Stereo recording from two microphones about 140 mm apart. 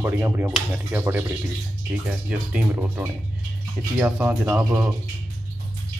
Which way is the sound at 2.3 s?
10° right (ahead or behind).